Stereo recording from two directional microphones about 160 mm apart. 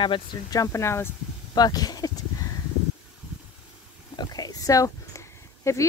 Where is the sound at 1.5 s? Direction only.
25° left (ahead or behind).